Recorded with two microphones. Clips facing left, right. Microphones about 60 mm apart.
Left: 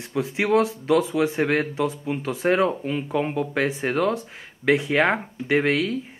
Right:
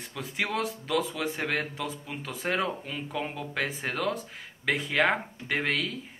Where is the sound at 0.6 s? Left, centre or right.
Centre.